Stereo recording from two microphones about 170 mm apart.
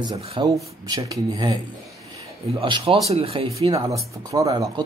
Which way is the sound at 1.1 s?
20° right (ahead or behind).